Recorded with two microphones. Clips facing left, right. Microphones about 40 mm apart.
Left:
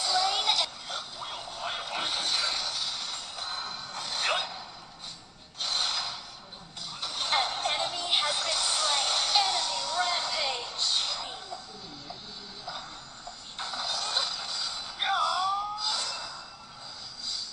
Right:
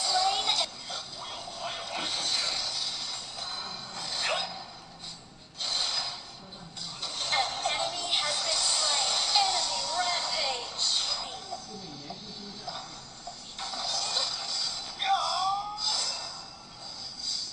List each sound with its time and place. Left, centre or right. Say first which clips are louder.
0.1 s a sound: even; centre
3.7 s a sound: left 1 dB; left
5.6 s mechanisms: left 1 dB; left
7.0 s music: left 1 dB; left
13.6 s music: left 1 dB; left
17.2 s vehicle: even; left